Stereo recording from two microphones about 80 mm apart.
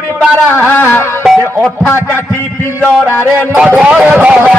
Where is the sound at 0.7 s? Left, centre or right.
Left.